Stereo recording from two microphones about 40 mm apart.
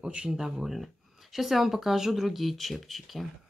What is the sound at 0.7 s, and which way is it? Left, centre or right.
Speech, centre.